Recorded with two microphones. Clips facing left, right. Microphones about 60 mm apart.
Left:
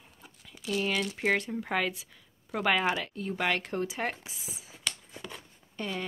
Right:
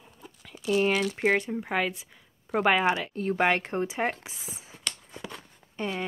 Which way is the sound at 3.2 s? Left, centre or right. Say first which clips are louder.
Right 7 dB; right.